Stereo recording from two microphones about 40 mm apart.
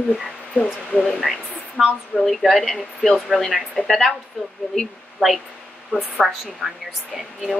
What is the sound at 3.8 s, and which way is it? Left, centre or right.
Speech, centre.